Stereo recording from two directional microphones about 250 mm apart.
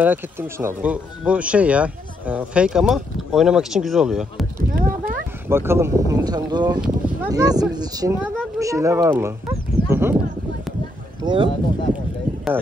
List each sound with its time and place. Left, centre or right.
0.0 s speech: centre
4.6 s clip-clop: right
5.5 s speech: centre
11.2 s speech: centre